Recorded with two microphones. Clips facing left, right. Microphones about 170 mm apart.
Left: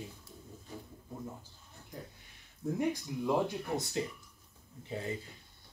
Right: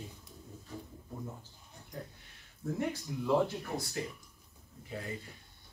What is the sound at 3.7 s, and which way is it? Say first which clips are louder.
Speech: left 3 dB; 20° left (ahead or behind).